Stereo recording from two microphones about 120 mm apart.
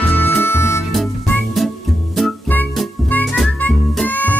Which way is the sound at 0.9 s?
Centre (ahead or behind).